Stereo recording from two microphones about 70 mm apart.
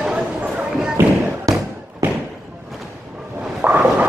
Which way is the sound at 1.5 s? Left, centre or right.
Right.